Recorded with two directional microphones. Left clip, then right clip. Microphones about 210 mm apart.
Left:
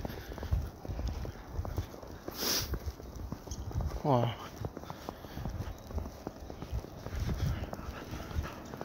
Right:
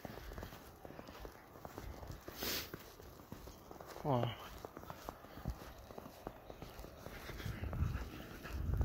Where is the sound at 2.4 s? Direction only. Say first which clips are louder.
Left 9 dB; 20° left (ahead or behind).